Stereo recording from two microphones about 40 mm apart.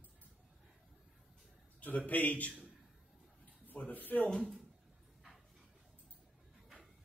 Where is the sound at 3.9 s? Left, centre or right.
Left.